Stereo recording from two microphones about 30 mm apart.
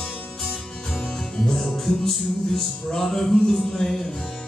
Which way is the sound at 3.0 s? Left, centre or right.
Centre.